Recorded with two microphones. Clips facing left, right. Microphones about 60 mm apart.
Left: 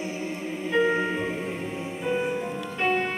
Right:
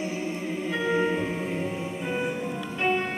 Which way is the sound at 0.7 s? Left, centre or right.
Left.